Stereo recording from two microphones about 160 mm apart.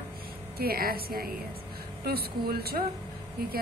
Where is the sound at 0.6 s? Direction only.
70° right (ahead or behind).